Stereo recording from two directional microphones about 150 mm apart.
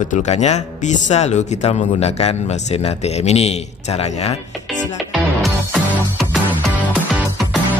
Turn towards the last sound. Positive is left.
turn(degrees=0)  # may be behind; listen again after turning